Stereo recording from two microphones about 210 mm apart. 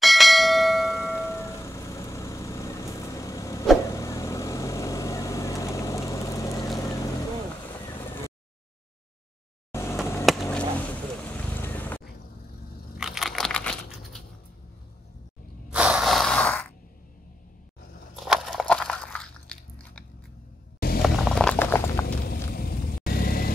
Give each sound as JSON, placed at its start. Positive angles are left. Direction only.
{"t": 0.0, "sound": "bell", "side_deg": 0}
{"t": 1.0, "sound": "vehicle", "side_deg": 10}
{"t": 6.8, "sound": "boat", "side_deg": 15}
{"t": 7.7, "sound": "vehicle", "side_deg": 20}
{"t": 9.7, "sound": "a sound", "side_deg": 10}
{"t": 11.6, "sound": "boat", "side_deg": 10}
{"t": 13.0, "sound": "a sound", "side_deg": 0}
{"t": 15.7, "sound": "snort", "side_deg": -5}
{"t": 18.2, "sound": "biting", "side_deg": 0}
{"t": 21.0, "sound": "a sound", "side_deg": 0}
{"t": 22.0, "sound": "vehicle", "side_deg": 45}